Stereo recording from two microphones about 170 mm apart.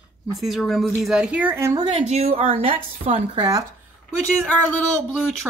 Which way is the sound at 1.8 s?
40° right (ahead or behind).